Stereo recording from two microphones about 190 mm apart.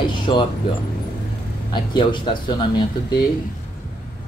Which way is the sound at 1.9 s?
25° left (ahead or behind).